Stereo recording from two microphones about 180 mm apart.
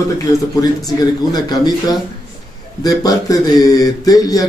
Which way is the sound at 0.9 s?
20° left (ahead or behind).